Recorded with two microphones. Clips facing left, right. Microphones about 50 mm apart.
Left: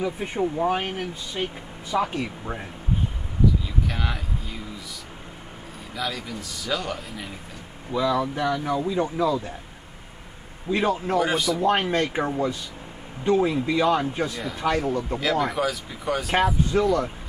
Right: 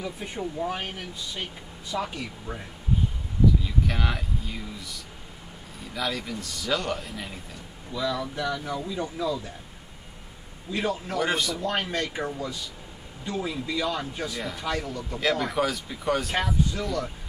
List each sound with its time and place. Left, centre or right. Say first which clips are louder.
0.0 s speech: left 7 dB; left
3.8 s a sound: even; centre
5.9 s a man's voice: even; centre
7.9 s speech: left 6 dB; left
10.7 s speech: left 6 dB; left
11.1 s a man's voice: left 2 dB; centre
11.9 s speech: left 6 dB; left
15.5 s a man's voice: left 1 dB; centre
16.4 s speech: left 6 dB; left